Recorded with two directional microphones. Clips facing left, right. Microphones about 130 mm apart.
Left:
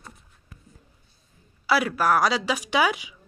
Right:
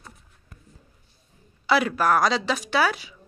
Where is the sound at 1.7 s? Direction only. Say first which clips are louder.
Right 1 dB; 5° left (ahead or behind).